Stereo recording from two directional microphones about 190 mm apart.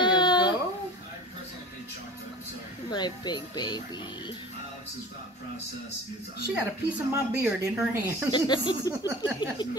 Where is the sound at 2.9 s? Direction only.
25° left (ahead or behind).